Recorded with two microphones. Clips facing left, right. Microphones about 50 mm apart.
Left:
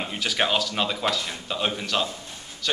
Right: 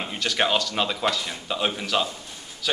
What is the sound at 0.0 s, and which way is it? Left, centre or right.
Speech, centre.